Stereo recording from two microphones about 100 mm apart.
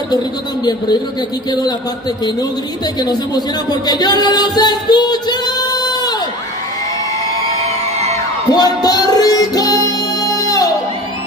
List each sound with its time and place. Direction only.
3.0 s music: 45° left (ahead or behind)
8.5 s music: 40° left (ahead or behind)